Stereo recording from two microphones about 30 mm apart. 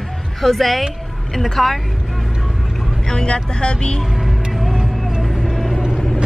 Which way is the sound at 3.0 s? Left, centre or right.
Left.